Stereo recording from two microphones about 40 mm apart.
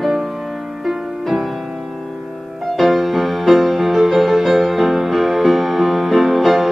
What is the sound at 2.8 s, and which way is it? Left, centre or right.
Music, centre.